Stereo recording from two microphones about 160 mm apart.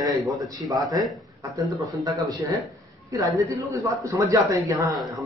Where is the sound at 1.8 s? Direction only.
20° right (ahead or behind).